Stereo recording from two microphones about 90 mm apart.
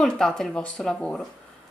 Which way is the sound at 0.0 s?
5° left (ahead or behind).